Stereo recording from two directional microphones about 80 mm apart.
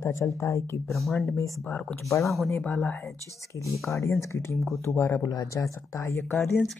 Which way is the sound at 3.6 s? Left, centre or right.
Left.